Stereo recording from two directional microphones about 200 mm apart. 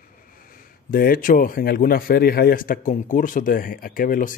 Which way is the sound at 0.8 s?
45° left (ahead or behind).